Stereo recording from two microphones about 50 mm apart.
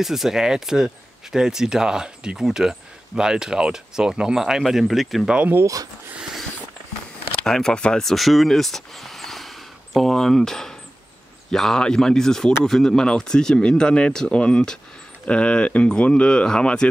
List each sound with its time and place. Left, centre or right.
0.0 s speech: centre
7.4 s speech: centre
8.0 s speech: centre